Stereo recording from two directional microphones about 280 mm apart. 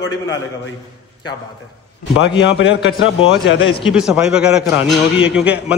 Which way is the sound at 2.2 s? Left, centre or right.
Left.